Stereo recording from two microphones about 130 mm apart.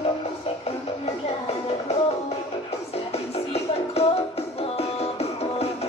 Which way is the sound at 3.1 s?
50° left (ahead or behind).